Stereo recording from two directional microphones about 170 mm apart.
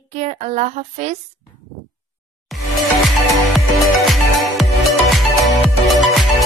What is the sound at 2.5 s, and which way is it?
Music, centre (ahead or behind).